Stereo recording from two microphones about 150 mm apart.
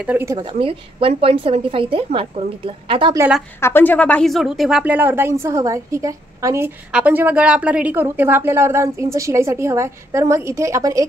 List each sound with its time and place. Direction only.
0.0 s a woman's voice: 15° right (ahead or behind)
0.4 s a woman's voice: 35° right (ahead or behind)
3.6 s a woman's voice: 15° left (ahead or behind); by 6.7 s 20° right (ahead or behind)
6.9 s a woman's voice: 10° right (ahead or behind)